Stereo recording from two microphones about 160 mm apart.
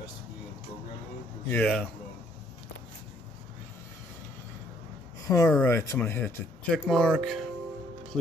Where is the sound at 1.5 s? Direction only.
5° left (ahead or behind).